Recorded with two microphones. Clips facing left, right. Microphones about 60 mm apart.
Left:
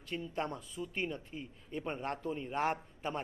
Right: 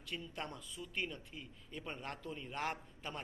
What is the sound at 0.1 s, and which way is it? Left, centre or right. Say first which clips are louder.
Speech: left 7 dB; left.